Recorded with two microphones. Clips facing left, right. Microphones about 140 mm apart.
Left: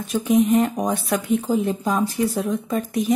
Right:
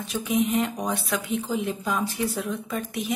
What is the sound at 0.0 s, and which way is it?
Speech, 45° left (ahead or behind).